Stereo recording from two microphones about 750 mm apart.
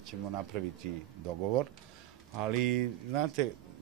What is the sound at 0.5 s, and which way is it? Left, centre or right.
Speech, right.